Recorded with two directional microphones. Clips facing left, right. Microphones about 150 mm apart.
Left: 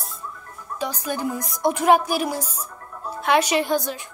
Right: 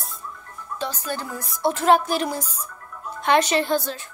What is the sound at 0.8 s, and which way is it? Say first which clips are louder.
A woman's voice: left 3 dB; 10° left (ahead or behind).